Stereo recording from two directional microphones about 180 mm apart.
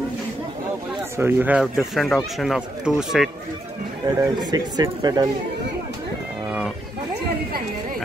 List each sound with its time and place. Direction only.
1.1 s speech: 10° right (ahead or behind)
4.2 s speech: 20° right (ahead or behind)